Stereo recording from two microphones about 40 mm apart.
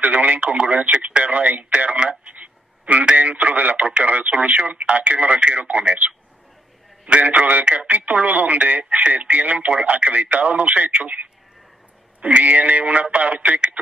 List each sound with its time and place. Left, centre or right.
0.0 s speech: right
7.1 s speech: right
8.8 s speech: right